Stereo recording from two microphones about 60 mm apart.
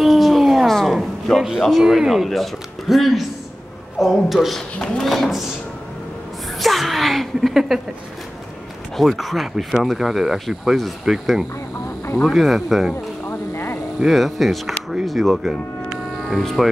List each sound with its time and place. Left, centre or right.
0.0 s howl: centre
1.6 s speech: centre
4.7 s speech: centre
5.0 s speech: centre
6.6 s speech: centre
8.9 s speech: centre
13.3 s vehicle: left
13.9 s speech: centre
15.0 s a sound: centre
16.3 s speech: centre